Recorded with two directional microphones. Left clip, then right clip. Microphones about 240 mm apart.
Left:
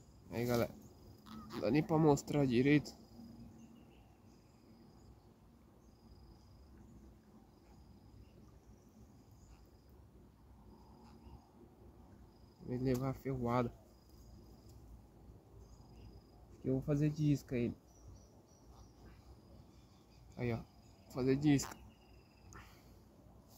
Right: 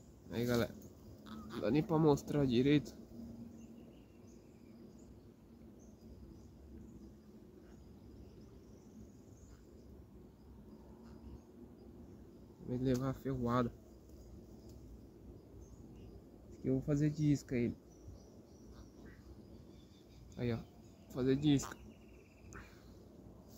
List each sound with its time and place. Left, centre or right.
0.3 s a sound: centre
1.2 s a sound: centre
1.6 s speech: left
13.0 s speech: centre
16.6 s speech: centre
20.3 s speech: left